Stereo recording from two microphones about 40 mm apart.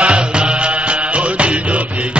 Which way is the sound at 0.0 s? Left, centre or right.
Right.